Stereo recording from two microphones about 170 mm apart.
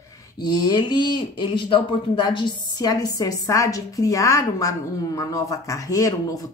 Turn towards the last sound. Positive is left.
turn(degrees=20)  # may be behind; listen again after turning